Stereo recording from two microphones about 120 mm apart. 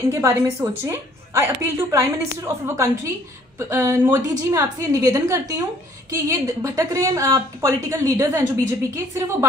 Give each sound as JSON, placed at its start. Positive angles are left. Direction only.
{"t": 0.1, "sound": "a woman's voice", "side_deg": -20}